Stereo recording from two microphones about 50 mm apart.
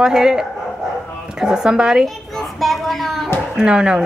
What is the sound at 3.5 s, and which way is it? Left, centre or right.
Speech, centre.